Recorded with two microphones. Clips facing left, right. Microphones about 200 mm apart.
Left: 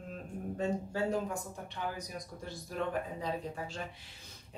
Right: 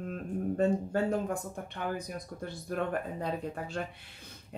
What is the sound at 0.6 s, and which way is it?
Speech, 55° right (ahead or behind).